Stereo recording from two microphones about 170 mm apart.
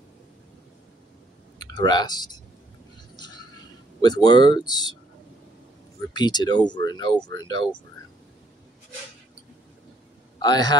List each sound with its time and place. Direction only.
1.6 s speech: 25° left (ahead or behind)
4.0 s speech: 25° left (ahead or behind)
6.1 s speech: 25° left (ahead or behind)
10.4 s speech: 25° left (ahead or behind)